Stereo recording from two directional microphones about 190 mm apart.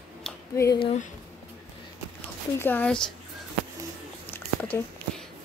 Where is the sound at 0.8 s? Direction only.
35° left (ahead or behind).